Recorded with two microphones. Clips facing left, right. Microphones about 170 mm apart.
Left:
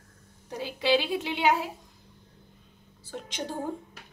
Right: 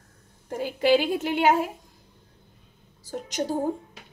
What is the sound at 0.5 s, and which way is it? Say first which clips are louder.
A woman's voice: right 5 dB; 50° right (ahead or behind).